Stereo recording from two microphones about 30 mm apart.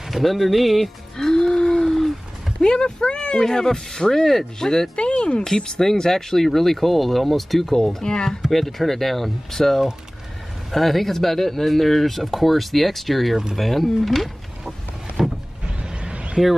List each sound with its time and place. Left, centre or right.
0.1 s speech: centre
1.1 s a sound: centre
1.8 s a sound: centre
2.6 s speech: left
3.4 s speech: centre
4.9 s speech: left
5.6 s speech: centre
8.4 s speech: centre
15.2 s vehicle: centre
15.8 s a sound: right